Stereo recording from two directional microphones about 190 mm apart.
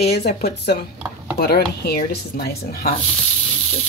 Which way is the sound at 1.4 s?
55° left (ahead or behind).